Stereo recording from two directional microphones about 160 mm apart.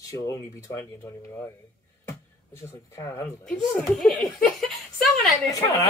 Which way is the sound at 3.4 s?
Centre (ahead or behind).